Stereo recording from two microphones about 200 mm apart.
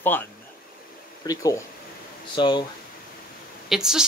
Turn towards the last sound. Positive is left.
turn(degrees=-5)  # may be behind; listen again after turning